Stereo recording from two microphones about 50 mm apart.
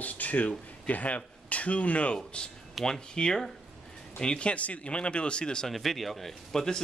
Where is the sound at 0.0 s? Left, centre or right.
Left.